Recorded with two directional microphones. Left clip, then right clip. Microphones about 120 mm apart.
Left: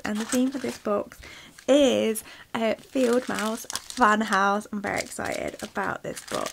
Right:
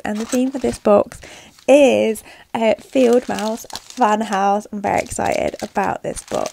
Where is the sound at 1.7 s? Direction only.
30° right (ahead or behind).